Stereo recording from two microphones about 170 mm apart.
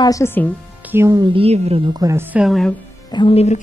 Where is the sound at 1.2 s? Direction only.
30° right (ahead or behind); by 2.8 s centre (ahead or behind).